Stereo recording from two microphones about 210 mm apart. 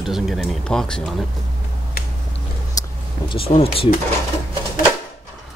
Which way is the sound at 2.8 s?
25° left (ahead or behind).